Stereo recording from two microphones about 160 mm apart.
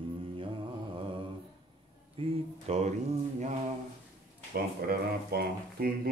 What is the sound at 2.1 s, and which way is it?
Speech, 40° right (ahead or behind).